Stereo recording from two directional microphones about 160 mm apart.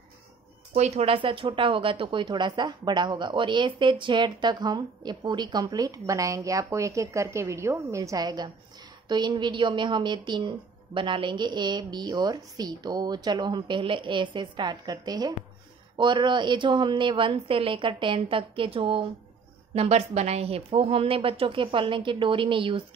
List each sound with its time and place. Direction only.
0.7 s a woman's voice: 40° right (ahead or behind)